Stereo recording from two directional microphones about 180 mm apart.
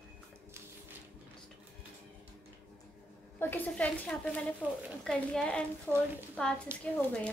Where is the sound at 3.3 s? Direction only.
10° left (ahead or behind).